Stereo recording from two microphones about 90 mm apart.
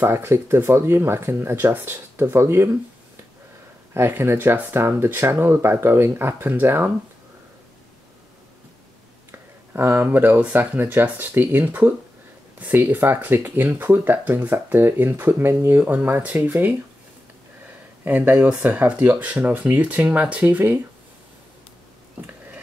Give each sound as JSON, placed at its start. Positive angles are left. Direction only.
{"t": 0.0, "sound": "speech", "side_deg": -30}
{"t": 3.9, "sound": "speech", "side_deg": -25}
{"t": 9.8, "sound": "speech", "side_deg": -25}
{"t": 18.0, "sound": "speech", "side_deg": -20}